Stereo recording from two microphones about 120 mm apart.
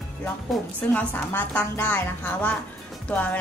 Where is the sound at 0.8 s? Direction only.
15° left (ahead or behind).